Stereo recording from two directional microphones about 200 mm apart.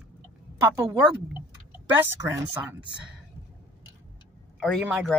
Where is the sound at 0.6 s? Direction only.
15° right (ahead or behind).